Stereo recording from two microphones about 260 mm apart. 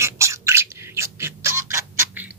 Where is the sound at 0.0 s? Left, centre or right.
Centre.